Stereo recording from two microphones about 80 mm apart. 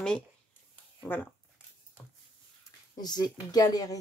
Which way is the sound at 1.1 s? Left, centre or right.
Left.